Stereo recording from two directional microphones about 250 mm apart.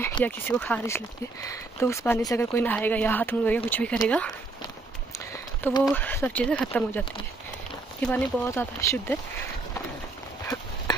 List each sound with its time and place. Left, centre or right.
0.0 s speech: centre
5.6 s speech: centre
8.1 s speech: centre
10.4 s clip-clop: centre